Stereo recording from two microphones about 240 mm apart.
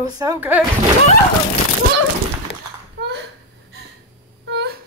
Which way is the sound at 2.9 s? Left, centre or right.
Right.